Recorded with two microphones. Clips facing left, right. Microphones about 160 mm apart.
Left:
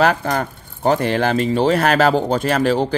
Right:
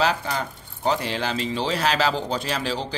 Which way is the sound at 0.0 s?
55° left (ahead or behind).